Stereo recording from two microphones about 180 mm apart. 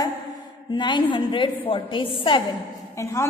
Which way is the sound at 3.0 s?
15° left (ahead or behind).